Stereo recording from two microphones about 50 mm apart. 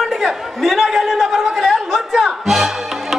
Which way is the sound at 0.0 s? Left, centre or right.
Centre.